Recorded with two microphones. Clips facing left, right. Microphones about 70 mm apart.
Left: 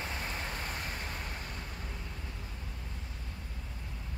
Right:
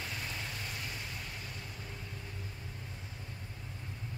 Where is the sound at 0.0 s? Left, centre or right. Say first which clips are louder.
Left 3 dB; left.